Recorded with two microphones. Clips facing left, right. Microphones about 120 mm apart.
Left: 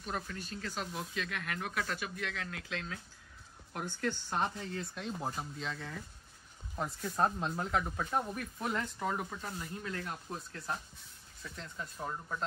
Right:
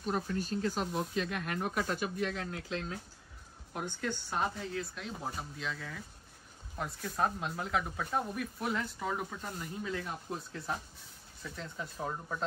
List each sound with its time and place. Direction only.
0.0 s speech: 35° right (ahead or behind)
3.7 s speech: 10° right (ahead or behind)